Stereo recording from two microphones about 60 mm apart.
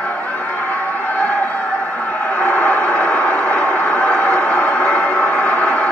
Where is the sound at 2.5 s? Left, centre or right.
Left.